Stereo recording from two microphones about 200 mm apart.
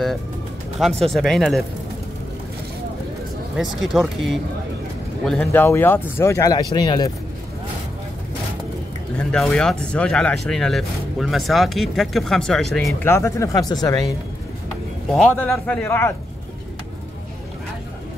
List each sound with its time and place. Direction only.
1.0 s speech: centre (ahead or behind)
3.5 s speech: centre (ahead or behind); by 7.1 s 20° left (ahead or behind)
9.2 s speech: 5° left (ahead or behind)
13.0 s speech: 15° left (ahead or behind)
15.1 s speech: 5° left (ahead or behind)